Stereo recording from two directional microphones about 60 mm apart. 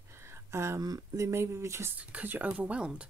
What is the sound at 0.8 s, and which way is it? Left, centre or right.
Speech, right.